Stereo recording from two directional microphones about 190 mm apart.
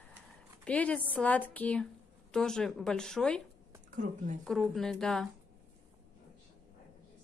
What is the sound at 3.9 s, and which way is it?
Speech, 40° right (ahead or behind).